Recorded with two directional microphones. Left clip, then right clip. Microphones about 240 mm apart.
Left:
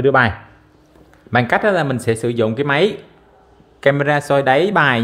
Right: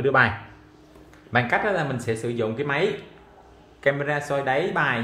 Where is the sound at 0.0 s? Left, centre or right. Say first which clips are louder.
Left 6 dB; left.